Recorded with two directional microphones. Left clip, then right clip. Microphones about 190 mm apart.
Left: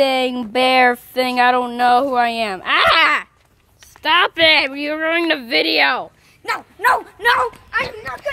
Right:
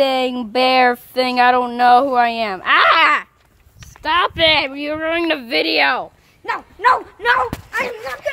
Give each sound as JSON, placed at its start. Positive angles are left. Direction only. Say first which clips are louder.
{"t": 0.0, "sound": "speech", "louder": "even", "side_deg": 0}
{"t": 4.0, "sound": "speech", "louder": "left 1 dB", "side_deg": 15}
{"t": 6.4, "sound": "speech", "louder": "even", "side_deg": 20}
{"t": 7.2, "sound": "speech", "louder": "even", "side_deg": 50}